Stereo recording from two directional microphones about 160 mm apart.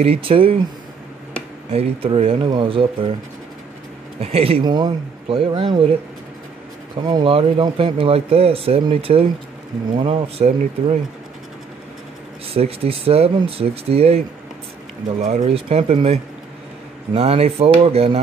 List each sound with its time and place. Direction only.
0.0 s speech: 35° right (ahead or behind)
1.7 s speech: 40° right (ahead or behind)
4.2 s speech: 35° right (ahead or behind)
4.6 s speech: 25° right (ahead or behind)
7.0 s speech: 25° right (ahead or behind)
12.5 s speech: 40° right (ahead or behind)
15.2 s speech: 40° right (ahead or behind)